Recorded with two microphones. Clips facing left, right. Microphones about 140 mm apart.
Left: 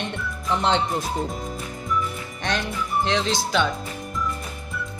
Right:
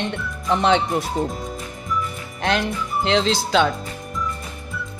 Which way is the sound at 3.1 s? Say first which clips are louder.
Right 8 dB; 85° right.